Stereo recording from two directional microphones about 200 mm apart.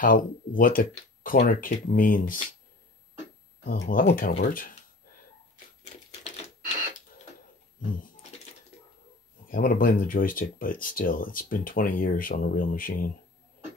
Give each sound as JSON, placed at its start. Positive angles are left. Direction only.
{"t": 0.0, "sound": "speech", "side_deg": 45}
{"t": 3.6, "sound": "speech", "side_deg": 45}
{"t": 9.5, "sound": "speech", "side_deg": 45}